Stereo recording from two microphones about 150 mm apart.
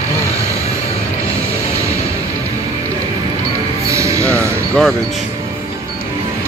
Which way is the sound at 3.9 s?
20° right (ahead or behind).